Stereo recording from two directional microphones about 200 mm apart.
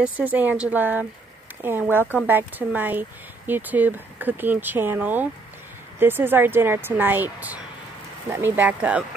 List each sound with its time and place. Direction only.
0.0 s speech: 10° right (ahead or behind)